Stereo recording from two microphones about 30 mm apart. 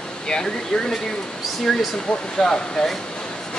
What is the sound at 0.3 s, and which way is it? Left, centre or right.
Speech, left.